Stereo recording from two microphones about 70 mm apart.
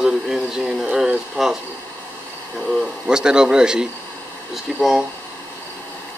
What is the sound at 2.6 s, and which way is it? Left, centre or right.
Speech, centre.